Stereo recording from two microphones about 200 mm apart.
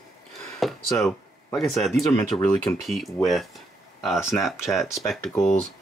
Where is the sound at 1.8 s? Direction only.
Centre (ahead or behind).